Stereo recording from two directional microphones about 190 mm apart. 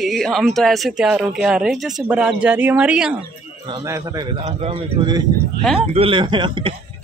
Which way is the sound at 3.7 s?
15° right (ahead or behind).